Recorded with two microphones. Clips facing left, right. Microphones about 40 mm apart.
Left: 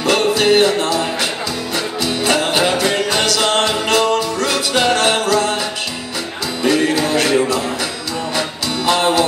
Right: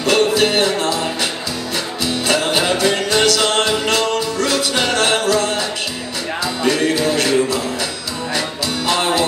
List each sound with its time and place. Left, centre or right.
0.0 s music: centre
6.6 s music: centre